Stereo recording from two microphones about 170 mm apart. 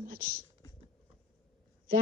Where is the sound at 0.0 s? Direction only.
60° right (ahead or behind).